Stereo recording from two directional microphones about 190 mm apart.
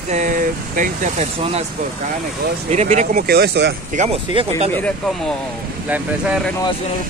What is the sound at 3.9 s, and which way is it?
Speech, 40° right (ahead or behind).